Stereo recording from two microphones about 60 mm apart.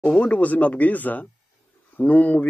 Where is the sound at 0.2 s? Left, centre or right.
Left.